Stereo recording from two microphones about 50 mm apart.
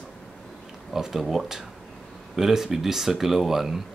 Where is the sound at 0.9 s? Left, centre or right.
Centre.